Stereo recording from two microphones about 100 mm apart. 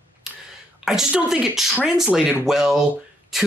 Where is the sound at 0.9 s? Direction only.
10° right (ahead or behind).